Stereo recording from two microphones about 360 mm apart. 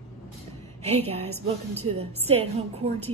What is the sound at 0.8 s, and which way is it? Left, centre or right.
A woman's voice, centre.